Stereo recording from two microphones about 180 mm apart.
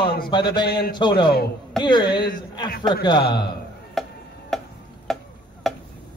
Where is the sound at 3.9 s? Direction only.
Centre (ahead or behind).